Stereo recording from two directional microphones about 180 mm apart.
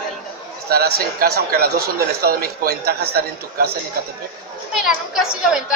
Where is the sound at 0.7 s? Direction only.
55° right (ahead or behind).